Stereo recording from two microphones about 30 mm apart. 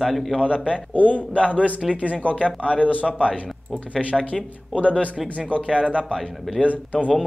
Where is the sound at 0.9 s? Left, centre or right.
Left.